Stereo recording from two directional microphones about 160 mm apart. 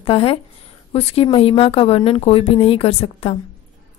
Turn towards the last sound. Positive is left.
turn(degrees=35)  # may be behind; listen again after turning